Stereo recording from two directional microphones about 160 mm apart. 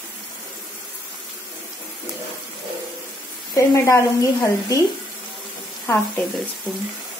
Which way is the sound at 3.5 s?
20° left (ahead or behind).